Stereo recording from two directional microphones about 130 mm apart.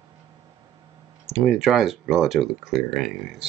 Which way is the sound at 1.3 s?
Centre (ahead or behind).